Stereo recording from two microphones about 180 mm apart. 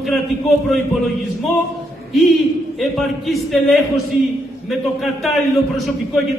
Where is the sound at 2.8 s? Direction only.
Centre (ahead or behind).